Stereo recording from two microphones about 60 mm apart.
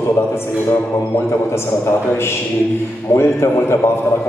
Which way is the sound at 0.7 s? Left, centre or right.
Left.